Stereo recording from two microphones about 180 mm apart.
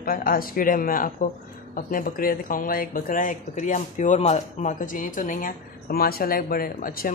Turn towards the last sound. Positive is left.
turn(degrees=50)  # may be behind; listen again after turning